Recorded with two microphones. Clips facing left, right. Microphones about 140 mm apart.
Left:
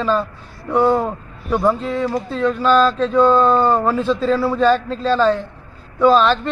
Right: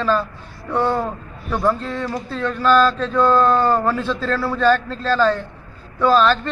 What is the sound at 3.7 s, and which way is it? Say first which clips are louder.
Speech: left 1 dB; 10° left (ahead or behind).